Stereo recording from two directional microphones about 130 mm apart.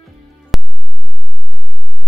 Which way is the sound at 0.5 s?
Centre (ahead or behind).